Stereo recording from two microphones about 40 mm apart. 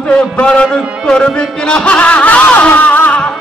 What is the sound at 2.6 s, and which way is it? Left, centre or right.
Music, left.